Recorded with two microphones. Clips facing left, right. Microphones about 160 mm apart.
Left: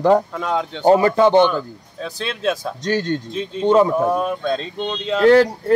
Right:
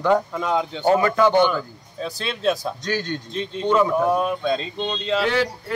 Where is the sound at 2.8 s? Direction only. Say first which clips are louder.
Left 5 dB; 35° left (ahead or behind).